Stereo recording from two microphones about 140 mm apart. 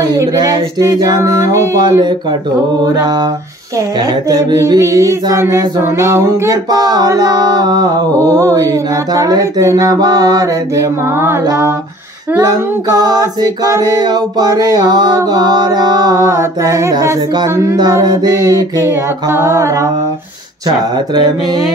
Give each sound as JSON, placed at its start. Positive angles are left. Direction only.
{"t": 0.1, "sound": "mantra", "side_deg": -25}
{"t": 4.3, "sound": "mantra", "side_deg": -25}
{"t": 12.9, "sound": "mantra", "side_deg": -30}